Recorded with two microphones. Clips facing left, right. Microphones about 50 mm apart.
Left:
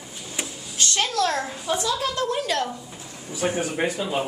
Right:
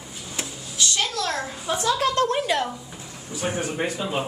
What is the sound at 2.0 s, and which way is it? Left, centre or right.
Speech, right.